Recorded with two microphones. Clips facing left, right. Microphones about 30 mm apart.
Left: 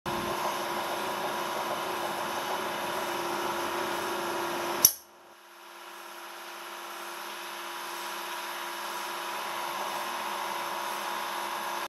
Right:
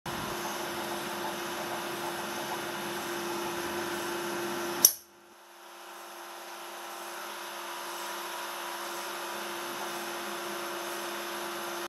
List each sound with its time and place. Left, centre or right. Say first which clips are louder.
0.5 s vacuum cleaner: left 4 dB; centre
9.8 s vacuum cleaner: left 3 dB; centre